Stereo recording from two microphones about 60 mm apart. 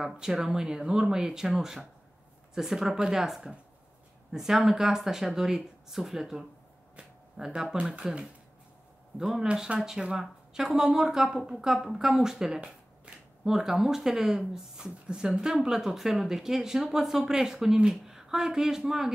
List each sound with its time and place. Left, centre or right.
0.0 s speech: centre
7.0 s a sound: centre
8.0 s speech: centre
9.5 s speech: centre
12.5 s shuffling cards: centre
13.4 s speech: centre